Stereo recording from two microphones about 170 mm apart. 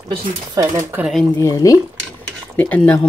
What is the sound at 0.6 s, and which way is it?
Speech, 15° right (ahead or behind).